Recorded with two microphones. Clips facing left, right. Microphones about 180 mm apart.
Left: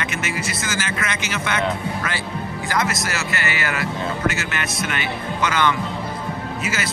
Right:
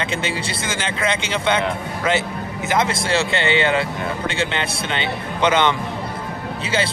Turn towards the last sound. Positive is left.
turn(degrees=-30)  # may be behind; listen again after turning